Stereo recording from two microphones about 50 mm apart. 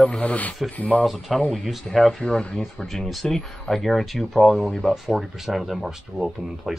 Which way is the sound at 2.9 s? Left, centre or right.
Centre.